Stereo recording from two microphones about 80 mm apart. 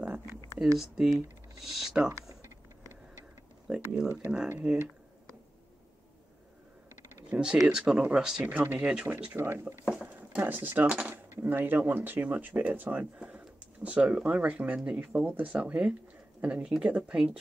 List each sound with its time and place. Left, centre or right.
0.7 s speech: centre
3.6 s a sound: centre
4.6 s speech: centre
7.2 s a sound: centre
7.6 s speech: centre
9.4 s speech: right
10.0 s speech: right